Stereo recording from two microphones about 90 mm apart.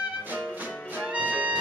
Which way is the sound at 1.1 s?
15° right (ahead or behind).